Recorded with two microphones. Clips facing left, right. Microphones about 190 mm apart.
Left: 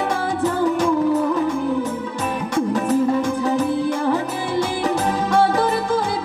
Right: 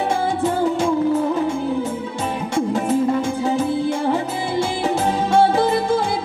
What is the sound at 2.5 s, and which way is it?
Music, 25° right (ahead or behind).